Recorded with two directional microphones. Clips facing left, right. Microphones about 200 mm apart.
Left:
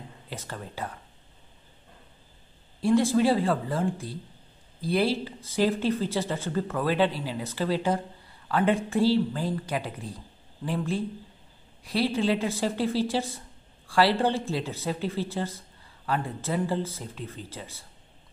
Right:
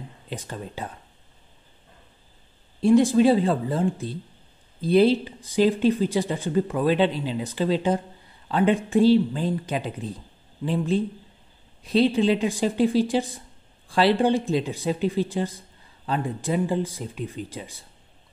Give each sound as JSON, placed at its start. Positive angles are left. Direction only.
{"t": 0.3, "sound": "speech", "side_deg": -20}
{"t": 2.8, "sound": "speech", "side_deg": -20}